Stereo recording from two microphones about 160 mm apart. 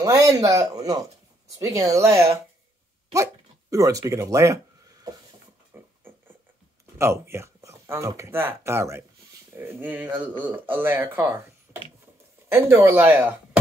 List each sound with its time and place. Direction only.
0.0 s speech: 20° right (ahead or behind)
3.7 s speech: 20° right (ahead or behind)
5.7 s music: 15° right (ahead or behind)
7.0 s speech: 15° right (ahead or behind)